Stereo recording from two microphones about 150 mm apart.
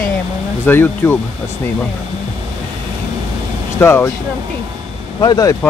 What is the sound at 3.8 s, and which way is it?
Speech, 15° left (ahead or behind).